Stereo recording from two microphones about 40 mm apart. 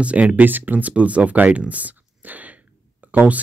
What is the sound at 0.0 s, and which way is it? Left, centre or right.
Speech, right.